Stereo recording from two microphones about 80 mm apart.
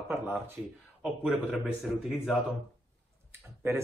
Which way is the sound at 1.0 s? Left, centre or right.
Centre.